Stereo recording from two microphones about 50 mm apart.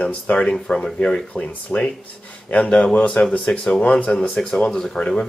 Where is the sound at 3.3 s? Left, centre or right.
Centre.